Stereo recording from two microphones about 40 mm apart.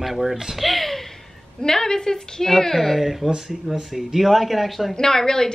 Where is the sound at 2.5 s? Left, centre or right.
Centre.